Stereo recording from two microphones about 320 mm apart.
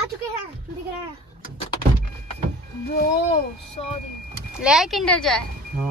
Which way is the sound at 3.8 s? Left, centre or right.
Centre.